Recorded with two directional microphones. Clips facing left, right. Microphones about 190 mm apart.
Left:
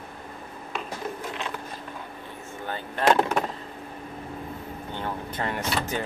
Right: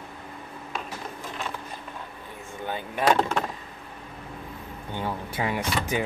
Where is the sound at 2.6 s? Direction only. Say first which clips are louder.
Left 1 dB; 10° right (ahead or behind).